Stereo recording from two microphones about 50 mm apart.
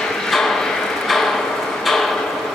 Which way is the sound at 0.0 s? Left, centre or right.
Centre.